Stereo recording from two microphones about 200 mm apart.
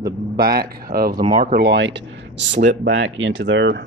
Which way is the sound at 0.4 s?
50° right (ahead or behind).